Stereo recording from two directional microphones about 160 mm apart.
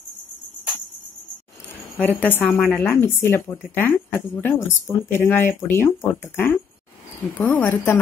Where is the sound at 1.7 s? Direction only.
10° left (ahead or behind).